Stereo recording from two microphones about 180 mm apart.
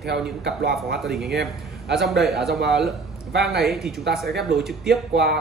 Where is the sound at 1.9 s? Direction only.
Centre (ahead or behind).